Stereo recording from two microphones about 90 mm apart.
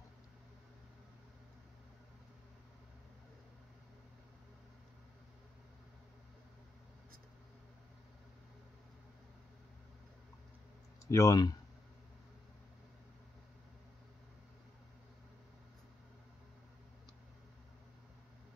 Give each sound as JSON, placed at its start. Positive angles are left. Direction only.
{"t": 11.1, "sound": "speech", "side_deg": 35}